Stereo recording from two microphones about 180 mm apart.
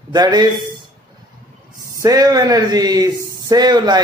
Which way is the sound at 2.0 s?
20° right (ahead or behind).